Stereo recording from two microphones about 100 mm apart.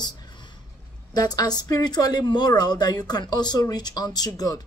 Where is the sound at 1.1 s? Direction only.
40° left (ahead or behind).